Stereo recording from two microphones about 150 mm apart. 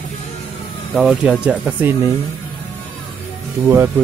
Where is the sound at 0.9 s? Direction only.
Centre (ahead or behind).